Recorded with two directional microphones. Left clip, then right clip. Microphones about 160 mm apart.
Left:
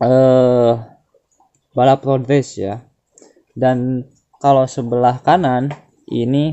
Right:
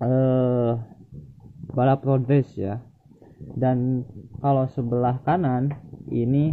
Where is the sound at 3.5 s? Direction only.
40° left (ahead or behind).